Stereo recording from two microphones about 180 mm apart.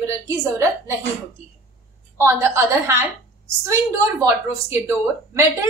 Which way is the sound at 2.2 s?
15° right (ahead or behind).